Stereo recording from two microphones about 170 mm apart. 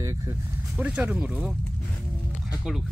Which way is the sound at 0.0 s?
20° right (ahead or behind).